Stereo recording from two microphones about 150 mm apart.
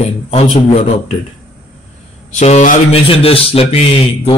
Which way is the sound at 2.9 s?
40° left (ahead or behind).